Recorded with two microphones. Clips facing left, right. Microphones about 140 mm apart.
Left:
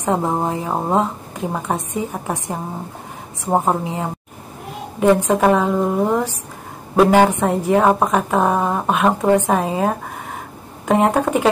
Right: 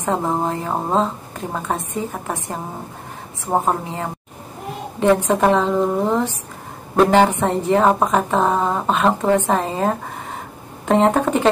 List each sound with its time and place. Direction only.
0.0 s a woman's voice: 15° left (ahead or behind)